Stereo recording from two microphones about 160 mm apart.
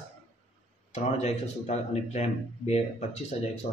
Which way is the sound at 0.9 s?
45° left (ahead or behind).